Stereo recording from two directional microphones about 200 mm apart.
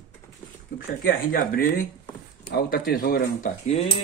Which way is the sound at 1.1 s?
45° left (ahead or behind).